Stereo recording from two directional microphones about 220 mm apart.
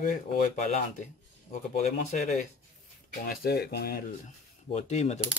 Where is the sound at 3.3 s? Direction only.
45° left (ahead or behind).